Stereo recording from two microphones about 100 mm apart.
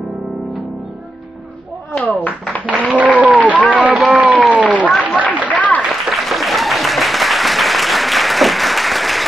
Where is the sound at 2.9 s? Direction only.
15° right (ahead or behind).